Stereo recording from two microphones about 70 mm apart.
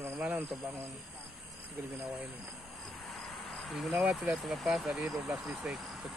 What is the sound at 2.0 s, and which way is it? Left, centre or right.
Speech, right.